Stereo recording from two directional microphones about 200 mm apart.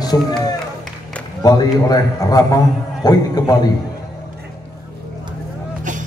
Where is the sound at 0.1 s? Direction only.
15° left (ahead or behind).